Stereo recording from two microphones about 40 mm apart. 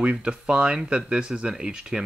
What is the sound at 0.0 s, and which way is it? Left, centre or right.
Speech, right.